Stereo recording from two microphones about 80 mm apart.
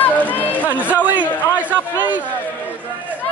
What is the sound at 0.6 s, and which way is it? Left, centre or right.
Speech, right.